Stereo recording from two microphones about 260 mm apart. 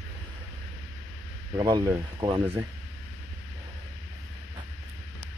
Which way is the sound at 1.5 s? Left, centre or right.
Centre.